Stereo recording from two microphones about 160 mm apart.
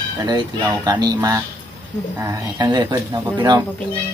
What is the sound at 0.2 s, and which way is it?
Speech, 25° right (ahead or behind).